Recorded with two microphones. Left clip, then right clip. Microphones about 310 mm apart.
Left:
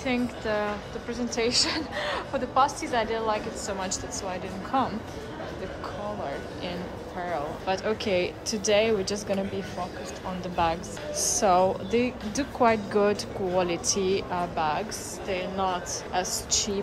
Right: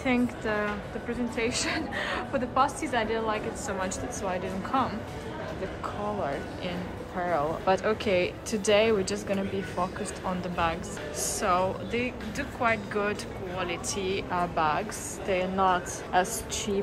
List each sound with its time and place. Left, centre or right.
0.0 s a woman's voice: centre
7.2 s a woman's voice: centre
10.5 s speech: centre